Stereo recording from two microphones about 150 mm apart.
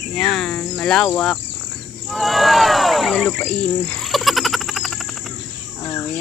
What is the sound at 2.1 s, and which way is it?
Bird, centre (ahead or behind).